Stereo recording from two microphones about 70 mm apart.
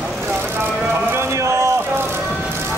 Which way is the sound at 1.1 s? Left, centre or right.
Right.